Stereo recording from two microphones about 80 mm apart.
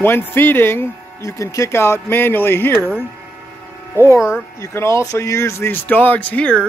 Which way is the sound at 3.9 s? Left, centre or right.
Left.